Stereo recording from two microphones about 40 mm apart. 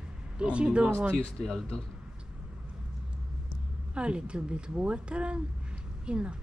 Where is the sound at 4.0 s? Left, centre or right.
Right.